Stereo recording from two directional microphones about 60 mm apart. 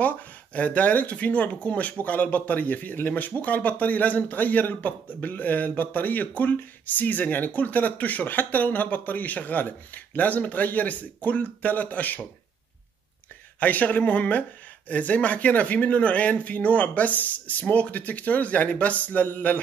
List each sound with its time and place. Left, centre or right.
0.0 s a man's voice: left
13.6 s a man's voice: left